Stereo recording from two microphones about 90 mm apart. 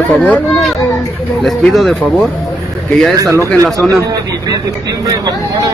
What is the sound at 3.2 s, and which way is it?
Speech, 35° right (ahead or behind).